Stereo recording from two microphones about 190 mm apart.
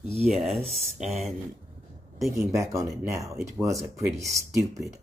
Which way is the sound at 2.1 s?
Centre (ahead or behind).